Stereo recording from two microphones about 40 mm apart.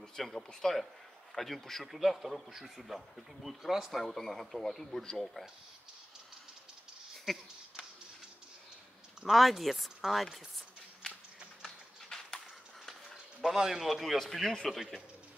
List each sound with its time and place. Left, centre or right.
0.1 s a man's voice: centre
7.3 s a man's voice: centre
9.2 s a man's voice: centre
11.6 s a sound: centre
13.4 s a man's voice: centre
14.7 s a man's voice: centre